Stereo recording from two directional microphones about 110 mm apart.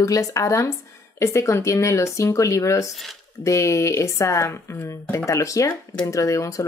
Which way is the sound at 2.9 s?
Centre (ahead or behind).